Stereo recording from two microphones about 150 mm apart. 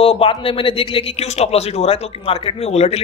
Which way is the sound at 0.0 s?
40° left (ahead or behind).